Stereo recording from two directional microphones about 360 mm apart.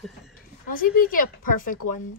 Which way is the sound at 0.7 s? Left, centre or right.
Left.